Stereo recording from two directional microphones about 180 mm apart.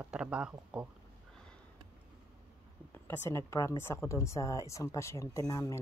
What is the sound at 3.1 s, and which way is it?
Speech, 15° left (ahead or behind).